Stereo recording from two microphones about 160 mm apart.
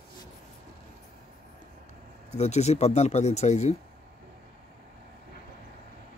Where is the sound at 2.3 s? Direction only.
45° left (ahead or behind).